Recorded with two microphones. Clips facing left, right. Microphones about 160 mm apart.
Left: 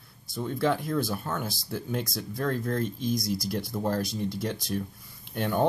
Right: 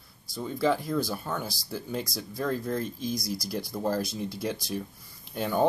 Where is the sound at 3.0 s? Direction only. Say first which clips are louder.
Left 3 dB; 50° left (ahead or behind).